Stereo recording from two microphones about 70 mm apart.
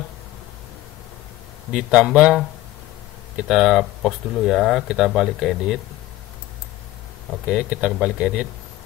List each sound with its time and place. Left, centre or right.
1.7 s speech: centre
7.4 s speech: centre